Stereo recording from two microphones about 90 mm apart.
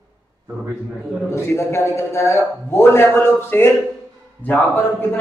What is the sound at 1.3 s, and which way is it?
A man's voice, 30° left (ahead or behind).